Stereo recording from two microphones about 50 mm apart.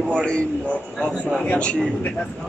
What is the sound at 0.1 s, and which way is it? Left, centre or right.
A man's voice, centre.